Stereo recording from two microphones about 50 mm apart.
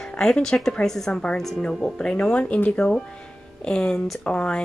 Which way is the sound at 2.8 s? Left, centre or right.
Centre.